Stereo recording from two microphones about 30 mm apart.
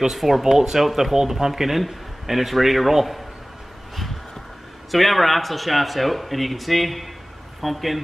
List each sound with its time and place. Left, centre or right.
0.1 s speech: centre
1.1 s speech: centre
4.9 s speech: centre